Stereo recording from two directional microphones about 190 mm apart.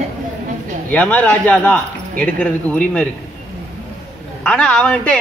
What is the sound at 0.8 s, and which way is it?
A man's voice, 10° left (ahead or behind).